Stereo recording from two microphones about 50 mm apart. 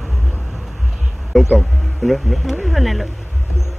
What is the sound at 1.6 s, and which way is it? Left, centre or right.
Speech, centre.